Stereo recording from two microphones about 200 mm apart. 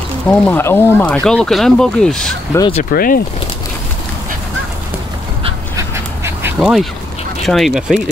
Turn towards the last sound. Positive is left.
turn(degrees=0)  # may be behind; listen again after turning